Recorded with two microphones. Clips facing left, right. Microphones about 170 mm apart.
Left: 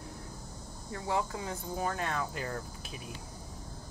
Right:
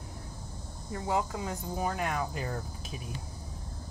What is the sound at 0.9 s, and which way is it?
Cricket, 20° right (ahead or behind).